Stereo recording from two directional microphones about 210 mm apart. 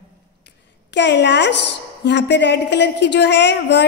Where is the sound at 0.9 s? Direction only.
55° left (ahead or behind).